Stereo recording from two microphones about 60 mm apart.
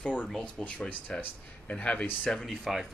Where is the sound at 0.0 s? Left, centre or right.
Left.